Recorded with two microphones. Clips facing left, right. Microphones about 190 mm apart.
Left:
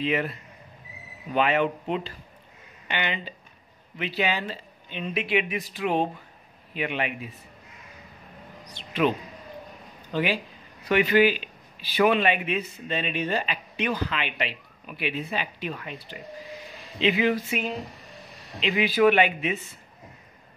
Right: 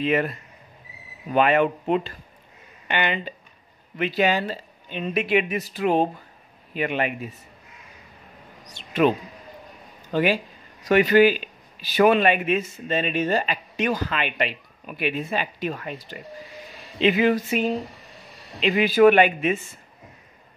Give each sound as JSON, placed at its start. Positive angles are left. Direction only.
{"t": 0.0, "sound": "speech", "side_deg": -50}
{"t": 8.7, "sound": "speech", "side_deg": -45}
{"t": 10.1, "sound": "speech", "side_deg": -45}